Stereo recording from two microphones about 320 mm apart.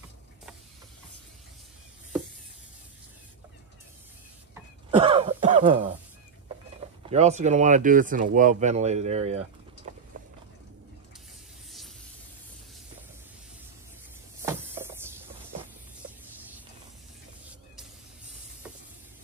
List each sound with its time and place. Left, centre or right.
4.9 s throat clearing: centre
7.1 s speech: right
9.9 s vehicle: right
14.4 s a sound: centre